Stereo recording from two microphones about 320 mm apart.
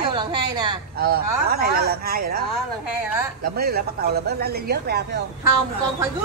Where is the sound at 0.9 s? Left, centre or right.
Right.